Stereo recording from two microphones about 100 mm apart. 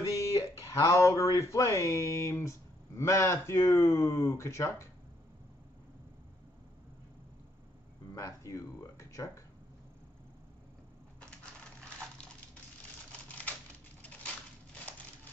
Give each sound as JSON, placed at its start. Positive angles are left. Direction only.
{"t": 0.1, "sound": "speech", "side_deg": 35}
{"t": 8.1, "sound": "a sound", "side_deg": 30}
{"t": 14.0, "sound": "crushing", "side_deg": 15}